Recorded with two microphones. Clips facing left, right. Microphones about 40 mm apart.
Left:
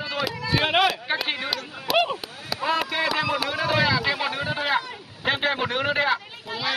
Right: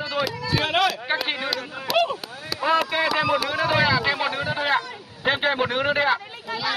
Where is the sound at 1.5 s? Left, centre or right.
Centre.